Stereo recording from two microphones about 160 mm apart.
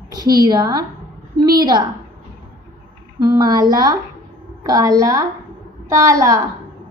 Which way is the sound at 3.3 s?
25° right (ahead or behind).